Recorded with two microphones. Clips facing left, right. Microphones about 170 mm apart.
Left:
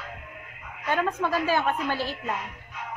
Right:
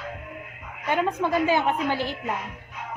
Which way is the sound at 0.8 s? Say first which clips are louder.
Right 2 dB; 15° right (ahead or behind).